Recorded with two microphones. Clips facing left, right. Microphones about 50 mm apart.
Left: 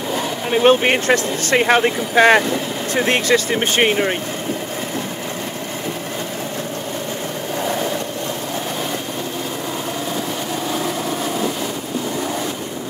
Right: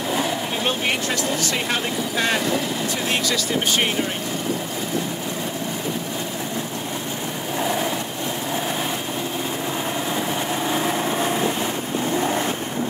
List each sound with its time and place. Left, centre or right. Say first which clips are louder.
0.5 s speech: left 9 dB; left
10.7 s vehicle: even; right